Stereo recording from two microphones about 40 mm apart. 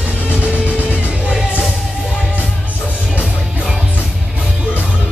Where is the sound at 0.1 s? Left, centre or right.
Left.